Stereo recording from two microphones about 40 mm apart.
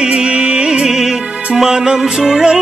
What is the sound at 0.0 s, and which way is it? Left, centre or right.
Music, right.